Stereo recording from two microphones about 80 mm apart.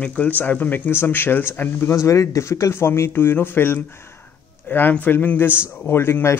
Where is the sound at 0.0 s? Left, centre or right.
Centre.